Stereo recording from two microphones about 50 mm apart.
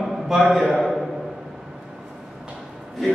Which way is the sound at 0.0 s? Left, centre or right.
Centre.